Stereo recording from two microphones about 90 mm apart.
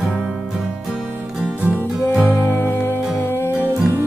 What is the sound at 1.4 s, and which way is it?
Music, 15° right (ahead or behind).